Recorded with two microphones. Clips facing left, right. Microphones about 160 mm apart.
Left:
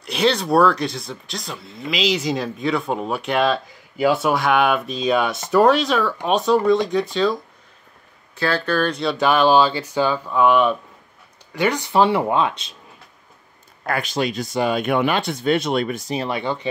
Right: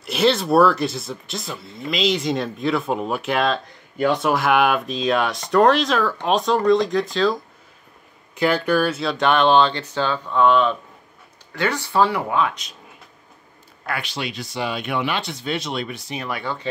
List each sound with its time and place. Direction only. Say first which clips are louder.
0.0 s speech: right 1 dB; centre (ahead or behind)
8.4 s speech: right 2 dB; 15° right (ahead or behind); by 12.7 s 30° left (ahead or behind)
13.8 s speech: left 6 dB; 45° left (ahead or behind)
16.2 s speech: left 3 dB; 25° left (ahead or behind)